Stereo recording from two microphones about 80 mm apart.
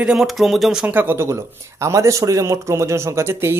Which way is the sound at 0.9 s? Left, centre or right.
Right.